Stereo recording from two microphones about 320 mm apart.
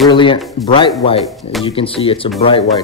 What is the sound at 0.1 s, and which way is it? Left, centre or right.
Speech, centre.